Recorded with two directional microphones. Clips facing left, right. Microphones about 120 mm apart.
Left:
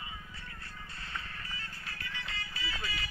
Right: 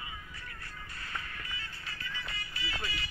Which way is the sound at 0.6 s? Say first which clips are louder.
Right 1 dB; 30° left (ahead or behind).